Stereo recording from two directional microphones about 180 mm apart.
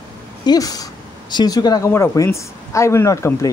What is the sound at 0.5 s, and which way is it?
Speech, 20° left (ahead or behind).